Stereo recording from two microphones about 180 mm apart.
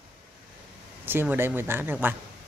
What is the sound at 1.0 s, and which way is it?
Speech, 10° right (ahead or behind).